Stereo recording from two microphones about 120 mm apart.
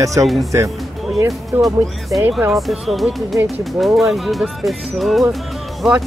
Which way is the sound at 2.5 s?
Centre (ahead or behind).